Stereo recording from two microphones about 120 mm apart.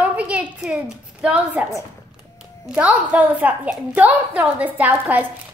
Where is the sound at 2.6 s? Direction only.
10° right (ahead or behind).